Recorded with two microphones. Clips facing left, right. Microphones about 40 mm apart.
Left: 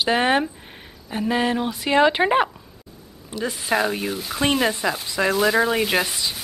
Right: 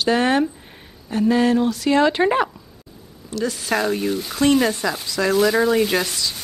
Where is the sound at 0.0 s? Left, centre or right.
Left.